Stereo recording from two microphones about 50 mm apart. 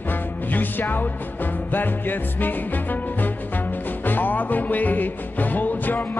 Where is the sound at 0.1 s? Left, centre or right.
Left.